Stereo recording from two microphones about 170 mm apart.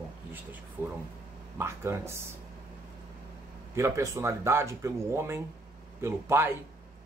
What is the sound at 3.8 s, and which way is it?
Speech, 15° right (ahead or behind).